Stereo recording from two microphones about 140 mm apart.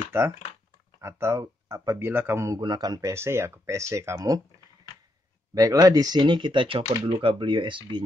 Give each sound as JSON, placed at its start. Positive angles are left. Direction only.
{"t": 0.1, "sound": "speech", "side_deg": -20}
{"t": 5.5, "sound": "speech", "side_deg": -25}